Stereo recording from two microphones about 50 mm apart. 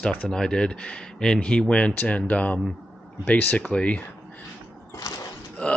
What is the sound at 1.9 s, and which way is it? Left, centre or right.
Speech, left.